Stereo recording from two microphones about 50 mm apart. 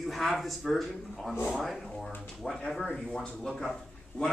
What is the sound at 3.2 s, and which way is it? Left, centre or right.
Speech, centre.